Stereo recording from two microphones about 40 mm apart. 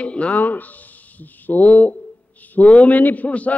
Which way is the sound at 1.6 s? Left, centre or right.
Left.